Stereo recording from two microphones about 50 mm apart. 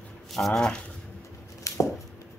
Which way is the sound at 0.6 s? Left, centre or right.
Centre.